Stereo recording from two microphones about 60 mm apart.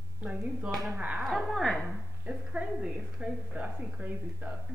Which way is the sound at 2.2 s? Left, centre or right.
Right.